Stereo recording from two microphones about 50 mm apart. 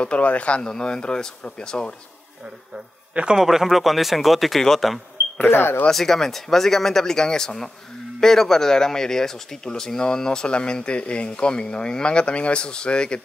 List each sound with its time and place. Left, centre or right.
0.0 s speech: left
0.6 s a man's voice: centre
3.3 s speech: centre
5.4 s speech: left
5.9 s a man's voice: centre